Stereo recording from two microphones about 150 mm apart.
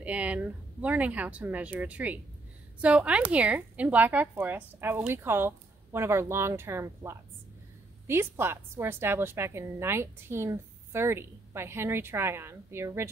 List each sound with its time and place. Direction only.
0.0 s a woman's voice: 10° right (ahead or behind)